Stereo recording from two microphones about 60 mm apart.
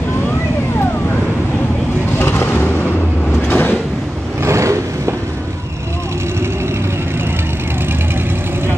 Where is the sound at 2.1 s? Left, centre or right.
Left.